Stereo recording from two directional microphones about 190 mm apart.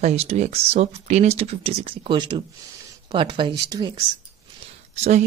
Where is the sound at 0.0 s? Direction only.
35° right (ahead or behind).